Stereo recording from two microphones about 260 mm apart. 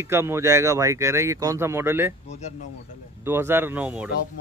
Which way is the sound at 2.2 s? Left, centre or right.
Left.